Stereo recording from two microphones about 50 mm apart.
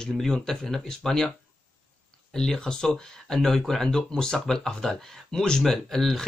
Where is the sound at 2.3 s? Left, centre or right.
Centre.